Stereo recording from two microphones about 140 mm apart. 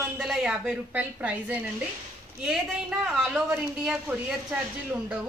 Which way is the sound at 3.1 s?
5° right (ahead or behind).